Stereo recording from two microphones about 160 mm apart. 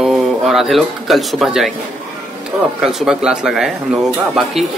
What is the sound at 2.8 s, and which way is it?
Speech, centre (ahead or behind).